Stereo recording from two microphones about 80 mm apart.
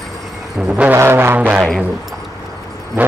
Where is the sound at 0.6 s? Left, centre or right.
Centre.